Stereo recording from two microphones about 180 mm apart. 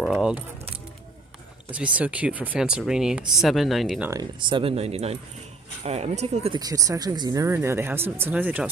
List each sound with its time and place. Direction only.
0.0 s keys jangling: 5° right (ahead or behind)
1.7 s speech: 5° right (ahead or behind)
4.1 s speech: 25° right (ahead or behind)
6.6 s speech: 20° right (ahead or behind)